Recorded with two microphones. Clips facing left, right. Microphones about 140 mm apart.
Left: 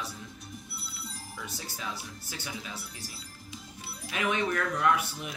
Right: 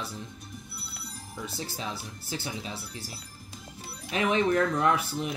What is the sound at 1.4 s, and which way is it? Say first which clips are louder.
Speech: right 5 dB; 30° right (ahead or behind).